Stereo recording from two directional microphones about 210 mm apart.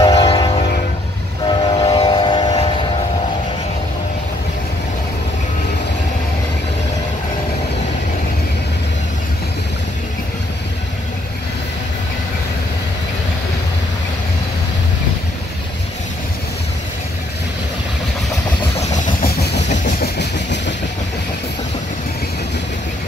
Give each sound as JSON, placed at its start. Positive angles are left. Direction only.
{"t": 0.1, "sound": "train", "side_deg": 25}
{"t": 1.5, "sound": "train", "side_deg": 25}
{"t": 18.8, "sound": "vehicle", "side_deg": 35}
{"t": 19.7, "sound": "vehicle", "side_deg": 35}
{"t": 20.2, "sound": "train", "side_deg": 55}